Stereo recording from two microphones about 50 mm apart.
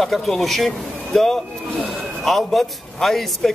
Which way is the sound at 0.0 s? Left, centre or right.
Centre.